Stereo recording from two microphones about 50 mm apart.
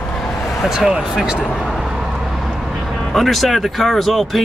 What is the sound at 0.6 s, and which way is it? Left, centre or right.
Speech, centre.